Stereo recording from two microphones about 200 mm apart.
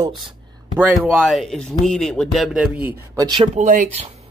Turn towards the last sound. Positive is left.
turn(degrees=-35)  # may be behind; listen again after turning